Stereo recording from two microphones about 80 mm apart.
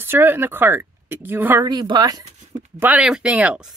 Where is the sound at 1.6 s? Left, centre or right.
Right.